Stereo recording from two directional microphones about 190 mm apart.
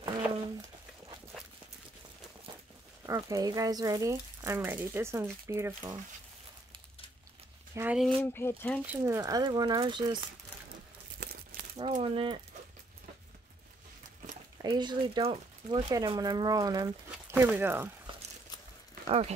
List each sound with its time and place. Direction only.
1.3 s walk: centre (ahead or behind)
3.1 s speech: 20° right (ahead or behind)
7.7 s speech: 10° right (ahead or behind)
8.3 s speech: 10° left (ahead or behind)
8.8 s speech: 15° right (ahead or behind)
11.2 s crumpling: 55° right (ahead or behind)
11.9 s speech: 30° right (ahead or behind)
14.6 s speech: 20° right (ahead or behind)
19.0 s speech: 30° right (ahead or behind)